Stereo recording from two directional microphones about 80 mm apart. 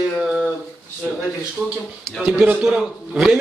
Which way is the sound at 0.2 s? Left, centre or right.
Centre.